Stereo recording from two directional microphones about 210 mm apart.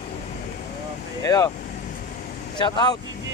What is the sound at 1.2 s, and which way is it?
Speech, 15° left (ahead or behind).